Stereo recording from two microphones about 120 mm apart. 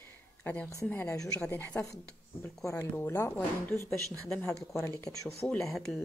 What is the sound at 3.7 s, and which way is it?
Speech, 25° right (ahead or behind).